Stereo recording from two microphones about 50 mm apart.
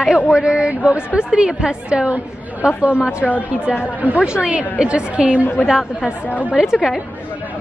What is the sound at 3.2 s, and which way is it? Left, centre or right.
Speech, centre.